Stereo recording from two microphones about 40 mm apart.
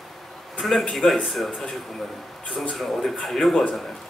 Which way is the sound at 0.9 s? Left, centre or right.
Centre.